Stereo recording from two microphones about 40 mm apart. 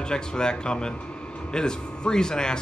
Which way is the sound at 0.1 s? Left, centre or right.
Left.